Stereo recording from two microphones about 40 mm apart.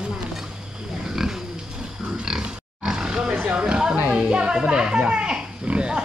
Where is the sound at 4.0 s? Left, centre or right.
Right.